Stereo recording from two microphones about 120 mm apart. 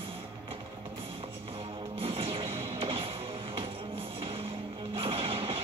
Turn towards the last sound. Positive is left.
turn(degrees=-50)  # may be behind; listen again after turning